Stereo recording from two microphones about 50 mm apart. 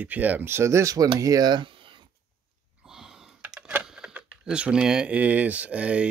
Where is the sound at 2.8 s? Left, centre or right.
Centre.